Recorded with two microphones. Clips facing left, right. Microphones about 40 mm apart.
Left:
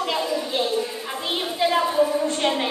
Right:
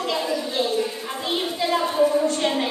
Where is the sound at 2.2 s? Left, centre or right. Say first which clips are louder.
Even; left.